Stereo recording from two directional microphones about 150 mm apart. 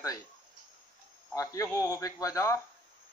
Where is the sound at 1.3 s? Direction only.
20° left (ahead or behind).